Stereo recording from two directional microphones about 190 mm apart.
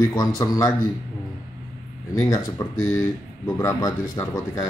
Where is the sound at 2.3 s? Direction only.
15° left (ahead or behind).